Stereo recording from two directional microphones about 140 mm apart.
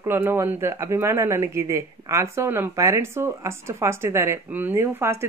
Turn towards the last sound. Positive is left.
turn(degrees=-20)  # may be behind; listen again after turning